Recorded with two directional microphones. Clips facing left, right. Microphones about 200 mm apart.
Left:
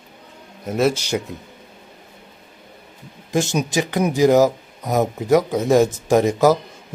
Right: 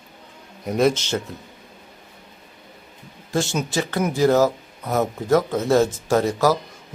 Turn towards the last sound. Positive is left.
turn(degrees=15)  # may be behind; listen again after turning